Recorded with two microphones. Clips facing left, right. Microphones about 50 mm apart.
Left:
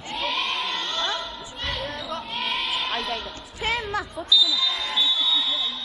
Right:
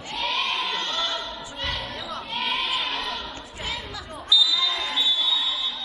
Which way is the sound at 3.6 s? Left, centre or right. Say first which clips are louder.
Left 7 dB; left.